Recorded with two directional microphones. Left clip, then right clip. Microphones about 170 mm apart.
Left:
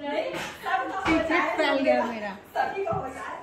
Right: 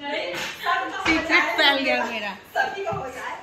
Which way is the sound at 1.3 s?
15° left (ahead or behind).